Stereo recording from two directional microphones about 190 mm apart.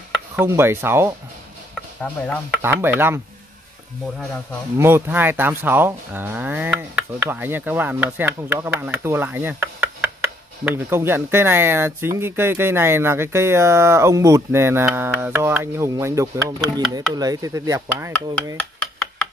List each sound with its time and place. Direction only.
0.4 s speech: 10° right (ahead or behind)
2.0 s speech: 5° left (ahead or behind)
2.6 s speech: 10° right (ahead or behind)
4.7 s speech: 10° right (ahead or behind)